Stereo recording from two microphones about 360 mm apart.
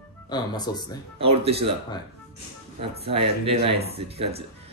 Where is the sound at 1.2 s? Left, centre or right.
Centre.